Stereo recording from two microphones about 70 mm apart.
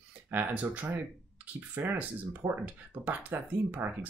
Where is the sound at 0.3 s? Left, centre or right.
Right.